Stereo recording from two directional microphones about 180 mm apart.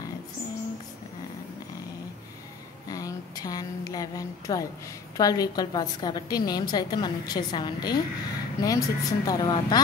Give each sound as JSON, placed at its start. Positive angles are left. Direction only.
{"t": 2.9, "sound": "a woman's voice", "side_deg": 20}